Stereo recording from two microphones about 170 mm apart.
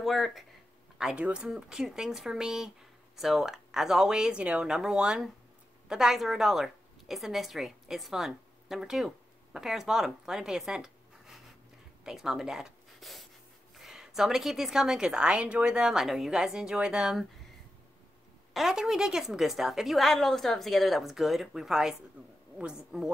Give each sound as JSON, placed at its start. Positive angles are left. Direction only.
{"t": 0.0, "sound": "a woman's voice", "side_deg": 0}
{"t": 18.5, "sound": "a woman's voice", "side_deg": 0}